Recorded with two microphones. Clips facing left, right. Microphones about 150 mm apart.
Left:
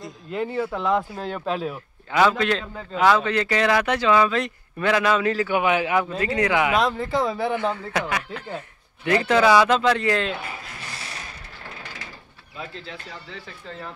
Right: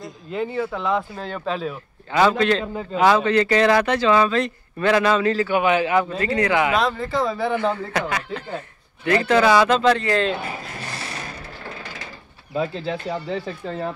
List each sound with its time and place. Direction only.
0.0 s speech: centre (ahead or behind)
2.6 s speech: 10° right (ahead or behind); by 10.3 s 5° left (ahead or behind)
12.5 s speech: 75° right (ahead or behind)